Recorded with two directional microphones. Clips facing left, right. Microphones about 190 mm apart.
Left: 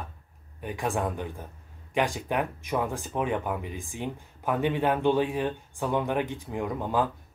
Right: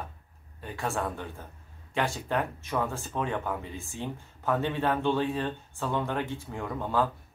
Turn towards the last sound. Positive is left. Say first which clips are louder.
# left 2 dB
turn(degrees=15)  # may be behind; listen again after turning